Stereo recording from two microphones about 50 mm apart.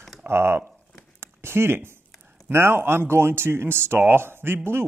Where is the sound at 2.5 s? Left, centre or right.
Right.